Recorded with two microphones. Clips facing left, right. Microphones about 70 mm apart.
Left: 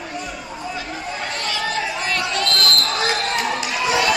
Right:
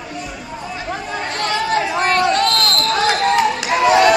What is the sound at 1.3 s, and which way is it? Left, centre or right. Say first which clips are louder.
Chatter: right 7 dB; right.